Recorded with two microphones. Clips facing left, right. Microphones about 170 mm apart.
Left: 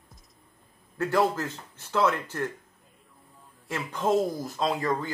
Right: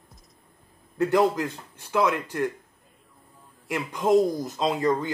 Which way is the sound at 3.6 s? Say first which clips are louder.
Right 2 dB; 15° right (ahead or behind).